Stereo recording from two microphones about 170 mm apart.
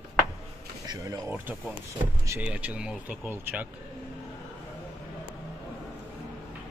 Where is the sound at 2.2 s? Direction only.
10° right (ahead or behind).